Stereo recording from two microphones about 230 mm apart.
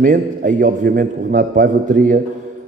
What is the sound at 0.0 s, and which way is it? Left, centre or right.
A man's voice, right.